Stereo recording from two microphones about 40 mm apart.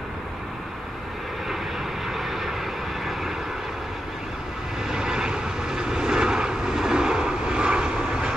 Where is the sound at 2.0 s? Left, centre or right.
Centre.